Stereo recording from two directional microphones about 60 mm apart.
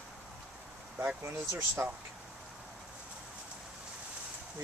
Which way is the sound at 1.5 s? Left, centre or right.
Right.